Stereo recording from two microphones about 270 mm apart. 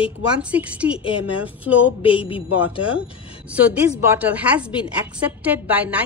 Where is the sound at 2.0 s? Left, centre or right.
Centre.